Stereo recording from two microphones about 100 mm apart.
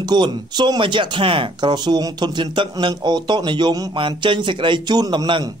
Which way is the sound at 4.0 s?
55° right (ahead or behind).